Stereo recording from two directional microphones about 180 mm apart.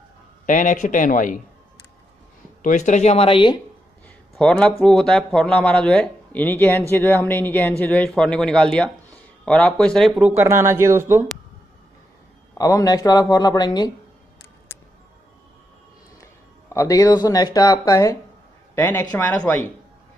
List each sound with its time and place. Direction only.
0.5 s speech: 45° left (ahead or behind)
2.6 s speech: 40° left (ahead or behind)
4.4 s speech: 5° left (ahead or behind)
10.1 s speech: 10° right (ahead or behind)
12.5 s speech: 20° left (ahead or behind)
16.2 s speech: 15° left (ahead or behind)